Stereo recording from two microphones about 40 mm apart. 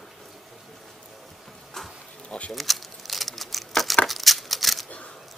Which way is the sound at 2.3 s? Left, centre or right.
Left.